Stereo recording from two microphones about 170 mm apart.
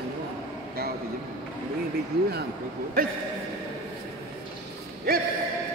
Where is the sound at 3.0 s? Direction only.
60° right (ahead or behind).